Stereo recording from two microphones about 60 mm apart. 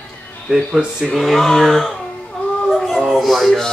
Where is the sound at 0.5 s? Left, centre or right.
Centre.